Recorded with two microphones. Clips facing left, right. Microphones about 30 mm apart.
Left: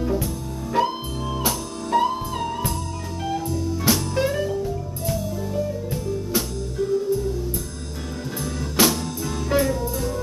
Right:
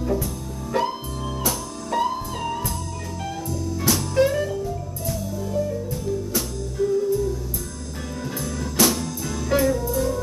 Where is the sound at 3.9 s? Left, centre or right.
Centre.